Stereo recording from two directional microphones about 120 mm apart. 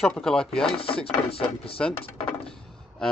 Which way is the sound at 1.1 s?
55° left (ahead or behind).